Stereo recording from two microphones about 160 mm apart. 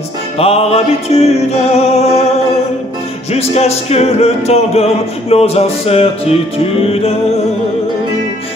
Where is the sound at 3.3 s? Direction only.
40° left (ahead or behind).